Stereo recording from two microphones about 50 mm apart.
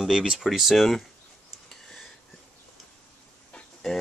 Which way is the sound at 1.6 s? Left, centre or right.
Centre.